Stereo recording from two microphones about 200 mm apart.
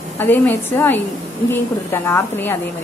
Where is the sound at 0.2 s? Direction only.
10° left (ahead or behind).